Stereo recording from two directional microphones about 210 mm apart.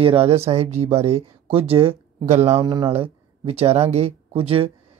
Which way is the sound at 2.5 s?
20° right (ahead or behind).